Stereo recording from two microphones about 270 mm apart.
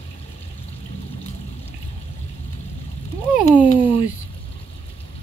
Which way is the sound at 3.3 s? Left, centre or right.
Centre.